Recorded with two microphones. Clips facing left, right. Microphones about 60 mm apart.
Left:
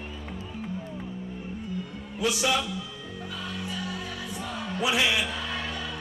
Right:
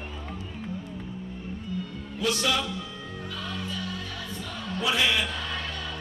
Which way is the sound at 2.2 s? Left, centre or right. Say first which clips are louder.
Left 1 dB; centre.